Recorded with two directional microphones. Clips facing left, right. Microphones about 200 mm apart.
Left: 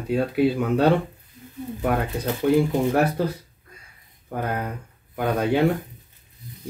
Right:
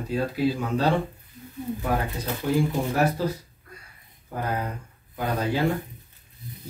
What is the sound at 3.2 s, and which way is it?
Speech, 60° left (ahead or behind).